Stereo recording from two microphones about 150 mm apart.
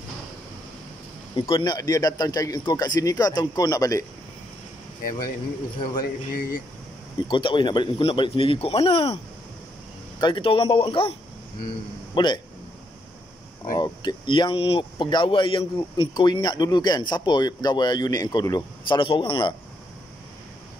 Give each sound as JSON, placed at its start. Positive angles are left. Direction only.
{"t": 1.3, "sound": "a man's voice", "side_deg": 35}
{"t": 5.9, "sound": "speech", "side_deg": 70}
{"t": 7.2, "sound": "speech", "side_deg": 35}
{"t": 10.2, "sound": "speech", "side_deg": 35}
{"t": 13.7, "sound": "a man's voice", "side_deg": 25}